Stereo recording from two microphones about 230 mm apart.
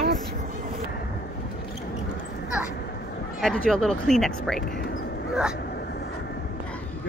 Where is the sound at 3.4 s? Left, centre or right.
Centre.